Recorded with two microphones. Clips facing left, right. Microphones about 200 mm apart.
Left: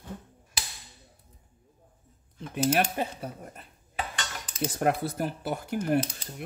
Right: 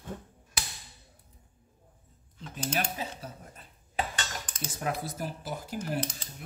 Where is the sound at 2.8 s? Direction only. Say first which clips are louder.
Left 6 dB; 60° left (ahead or behind).